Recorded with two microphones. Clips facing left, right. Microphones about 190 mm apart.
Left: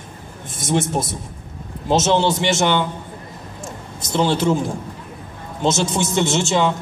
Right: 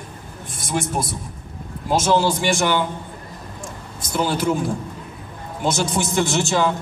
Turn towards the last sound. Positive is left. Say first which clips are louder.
# left 1 dB
turn(degrees=20)  # may be behind; listen again after turning